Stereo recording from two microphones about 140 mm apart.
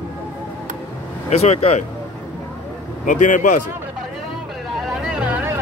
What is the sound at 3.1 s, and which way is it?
Speech, 65° left (ahead or behind).